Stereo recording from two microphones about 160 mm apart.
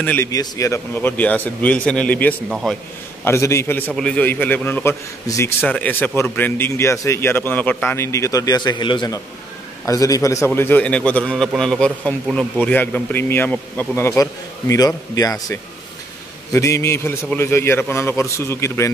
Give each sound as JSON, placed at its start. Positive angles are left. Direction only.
{"t": 0.0, "sound": "a man's voice", "side_deg": 10}
{"t": 0.3, "sound": "a man's voice", "side_deg": 20}
{"t": 3.3, "sound": "a man's voice", "side_deg": 15}